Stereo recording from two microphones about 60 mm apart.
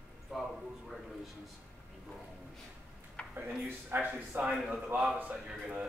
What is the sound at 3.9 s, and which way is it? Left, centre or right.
A man's voice, right.